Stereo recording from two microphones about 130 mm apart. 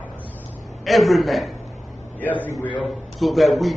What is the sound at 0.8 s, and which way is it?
Speech, centre (ahead or behind).